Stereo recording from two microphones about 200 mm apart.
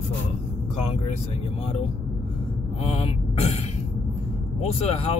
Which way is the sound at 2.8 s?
30° left (ahead or behind).